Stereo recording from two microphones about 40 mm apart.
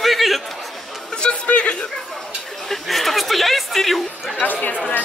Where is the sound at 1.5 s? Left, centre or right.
Left.